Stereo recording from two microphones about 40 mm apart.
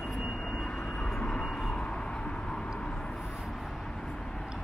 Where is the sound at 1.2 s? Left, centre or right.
Left.